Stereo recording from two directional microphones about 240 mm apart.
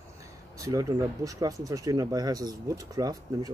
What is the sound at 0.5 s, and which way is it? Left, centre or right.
Speech, centre.